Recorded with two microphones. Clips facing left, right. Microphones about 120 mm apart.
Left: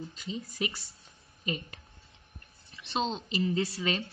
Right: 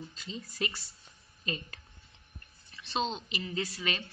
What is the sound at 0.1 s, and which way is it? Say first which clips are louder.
Speech: left 4 dB; 15° left (ahead or behind).